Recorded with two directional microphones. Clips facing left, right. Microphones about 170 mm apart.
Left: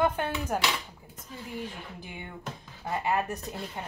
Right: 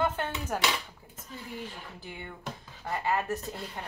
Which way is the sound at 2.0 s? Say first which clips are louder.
Right 1 dB; 15° left (ahead or behind).